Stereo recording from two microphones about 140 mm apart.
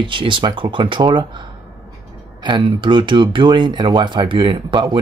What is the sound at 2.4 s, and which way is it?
Speech, 35° right (ahead or behind).